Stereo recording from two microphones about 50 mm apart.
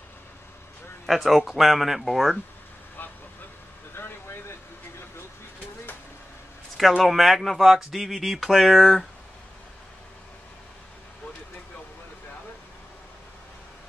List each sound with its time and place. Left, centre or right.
1.0 s speech: centre
3.0 s vehicle: left
3.9 s vehicle: left
7.0 s speech: centre